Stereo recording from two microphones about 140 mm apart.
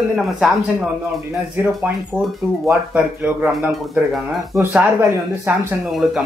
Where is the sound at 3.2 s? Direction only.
5° right (ahead or behind).